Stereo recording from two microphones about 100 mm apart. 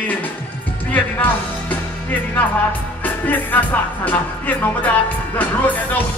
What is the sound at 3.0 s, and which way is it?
Music, 15° left (ahead or behind).